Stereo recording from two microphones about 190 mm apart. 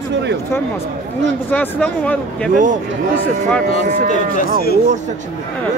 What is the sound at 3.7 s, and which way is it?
Speech, 40° left (ahead or behind).